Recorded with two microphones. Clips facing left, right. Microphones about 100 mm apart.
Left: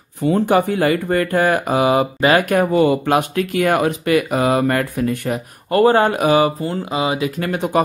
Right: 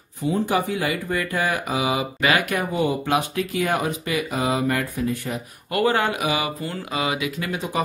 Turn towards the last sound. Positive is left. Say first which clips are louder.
# left 7 dB
turn(degrees=55)  # may be behind; listen again after turning